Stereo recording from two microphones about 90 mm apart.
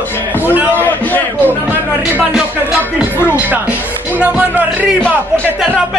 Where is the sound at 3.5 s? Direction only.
20° right (ahead or behind).